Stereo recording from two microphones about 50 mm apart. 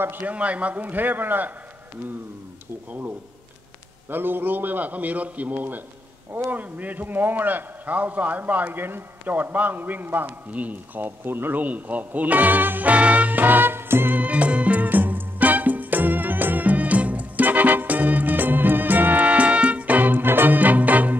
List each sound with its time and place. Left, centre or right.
0.0 s a man's voice: right
0.3 s a man's voice: right
4.1 s a man's voice: right
10.5 s speech: right
14.1 s music: right